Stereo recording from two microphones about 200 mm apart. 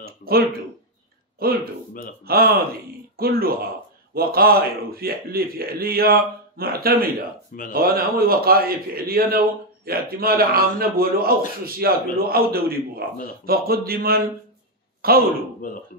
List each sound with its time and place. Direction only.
0.0 s a man's voice: 50° right (ahead or behind)
15.6 s speech: 40° left (ahead or behind)